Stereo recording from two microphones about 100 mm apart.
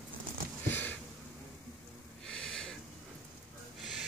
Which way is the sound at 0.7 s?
20° left (ahead or behind).